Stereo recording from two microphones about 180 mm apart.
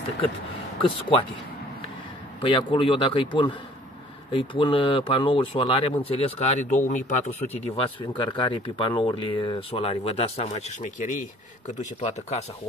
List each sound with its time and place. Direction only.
2.4 s a man's voice: 30° left (ahead or behind)